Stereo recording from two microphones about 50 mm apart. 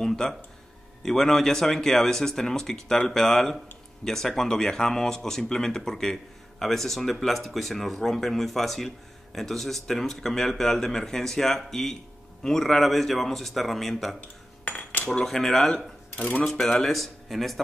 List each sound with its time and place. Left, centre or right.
0.0 s speech: centre
4.0 s speech: centre
14.2 s cutlery: left
15.2 s speech: centre